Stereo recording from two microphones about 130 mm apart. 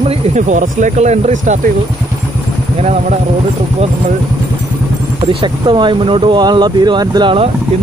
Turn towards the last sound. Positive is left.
turn(degrees=-40)  # may be behind; listen again after turning